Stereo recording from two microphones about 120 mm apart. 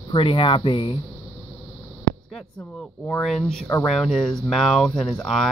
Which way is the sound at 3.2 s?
Centre (ahead or behind).